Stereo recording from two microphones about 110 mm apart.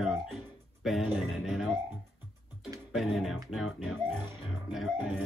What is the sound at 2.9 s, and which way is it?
Speech, centre (ahead or behind).